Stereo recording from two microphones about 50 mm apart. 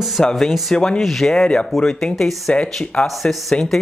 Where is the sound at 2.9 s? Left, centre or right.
Centre.